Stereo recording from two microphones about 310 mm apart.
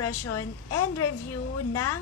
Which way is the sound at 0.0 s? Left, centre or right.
Left.